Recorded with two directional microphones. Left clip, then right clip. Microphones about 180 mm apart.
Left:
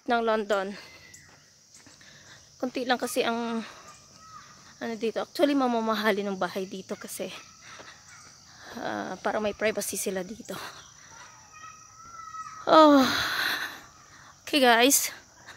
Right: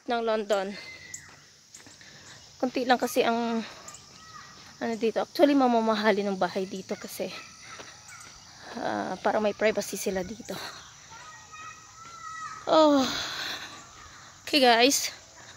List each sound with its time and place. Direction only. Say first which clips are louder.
0.0 s speech: left 2 dB; 45° left (ahead or behind)
0.6 s speech: even; 20° left (ahead or behind)
2.6 s speech: right 3 dB; 5° right (ahead or behind)
4.7 s speech: right 3 dB; 5° right (ahead or behind); by 7.4 s 10° left (ahead or behind)
8.6 s speech: right 2 dB; 5° right (ahead or behind)
9.8 s speech: right 1 dB; 10° left (ahead or behind)
12.6 s a sound: left 4 dB; 55° left (ahead or behind)
14.4 s speech: even; 25° left (ahead or behind)